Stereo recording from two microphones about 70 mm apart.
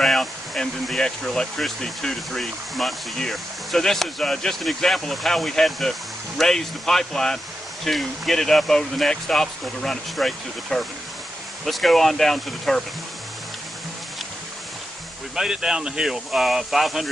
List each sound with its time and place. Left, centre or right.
0.0 s speech: centre
15.3 s speech: centre